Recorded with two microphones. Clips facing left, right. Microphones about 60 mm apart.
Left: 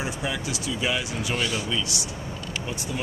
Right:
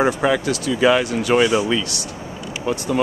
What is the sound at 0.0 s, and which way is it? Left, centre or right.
Speech, right.